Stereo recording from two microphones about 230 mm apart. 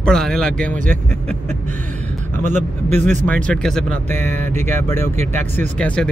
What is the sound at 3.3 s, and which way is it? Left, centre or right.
Speech, centre.